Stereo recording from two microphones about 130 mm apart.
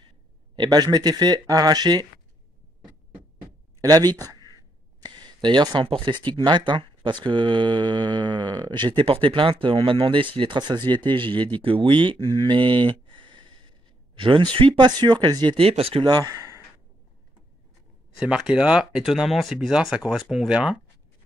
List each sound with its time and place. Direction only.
0.6 s speech: 30° right (ahead or behind)
3.8 s speech: 30° right (ahead or behind); by 16.1 s 45° right (ahead or behind)
16.1 s speech: 30° right (ahead or behind)
18.2 s speech: 5° right (ahead or behind)